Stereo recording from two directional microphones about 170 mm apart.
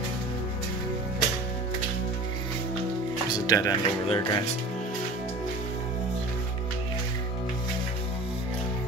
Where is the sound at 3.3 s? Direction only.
20° left (ahead or behind).